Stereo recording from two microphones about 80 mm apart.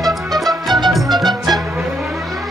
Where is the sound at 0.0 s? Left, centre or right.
Right.